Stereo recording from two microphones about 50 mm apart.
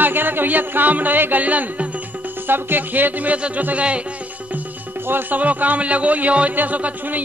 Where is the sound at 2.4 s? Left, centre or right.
Right.